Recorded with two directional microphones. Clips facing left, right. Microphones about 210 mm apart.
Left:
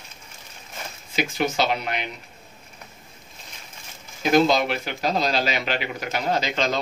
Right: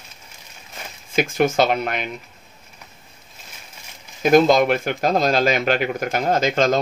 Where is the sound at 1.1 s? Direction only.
50° right (ahead or behind).